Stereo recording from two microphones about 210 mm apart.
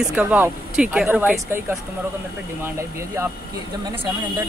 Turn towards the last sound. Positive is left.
turn(degrees=-15)  # may be behind; listen again after turning